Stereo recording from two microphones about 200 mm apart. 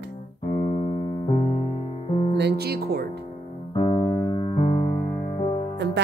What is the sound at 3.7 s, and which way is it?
Keyboard, 25° left (ahead or behind).